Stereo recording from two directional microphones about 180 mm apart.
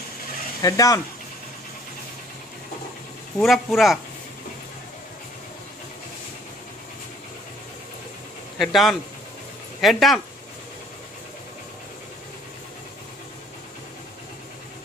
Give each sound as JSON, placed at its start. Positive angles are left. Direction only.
{"t": 0.6, "sound": "speech", "side_deg": 20}
{"t": 3.3, "sound": "speech", "side_deg": 0}
{"t": 8.5, "sound": "speech", "side_deg": 0}